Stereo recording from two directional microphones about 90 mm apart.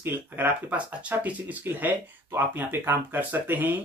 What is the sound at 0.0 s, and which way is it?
Speech, 20° right (ahead or behind).